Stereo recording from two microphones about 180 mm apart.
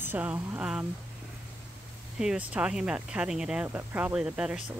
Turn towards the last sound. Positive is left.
turn(degrees=-5)  # may be behind; listen again after turning